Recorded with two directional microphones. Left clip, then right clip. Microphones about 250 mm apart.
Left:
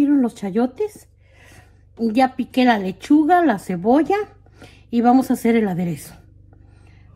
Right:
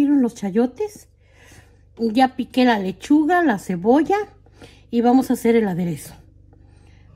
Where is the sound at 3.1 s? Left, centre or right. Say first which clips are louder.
Left 2 dB; right.